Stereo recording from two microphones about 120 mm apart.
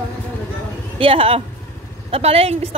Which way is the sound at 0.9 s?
50° right (ahead or behind).